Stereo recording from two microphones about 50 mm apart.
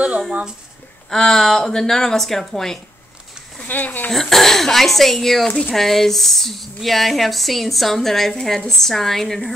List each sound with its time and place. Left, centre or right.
1.1 s a woman's voice: centre
3.6 s speech: left
4.1 s speech: centre